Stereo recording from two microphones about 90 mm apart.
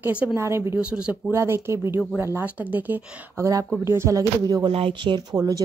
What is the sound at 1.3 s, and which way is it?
Speech, 30° right (ahead or behind).